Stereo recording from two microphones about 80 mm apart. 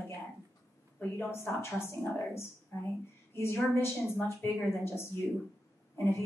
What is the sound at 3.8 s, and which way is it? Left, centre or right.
A woman's voice, left.